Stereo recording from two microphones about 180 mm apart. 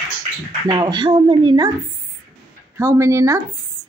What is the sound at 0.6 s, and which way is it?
Speech, 25° right (ahead or behind).